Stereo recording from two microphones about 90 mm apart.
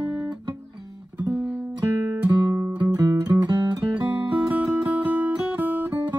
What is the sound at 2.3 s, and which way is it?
Music, 30° right (ahead or behind).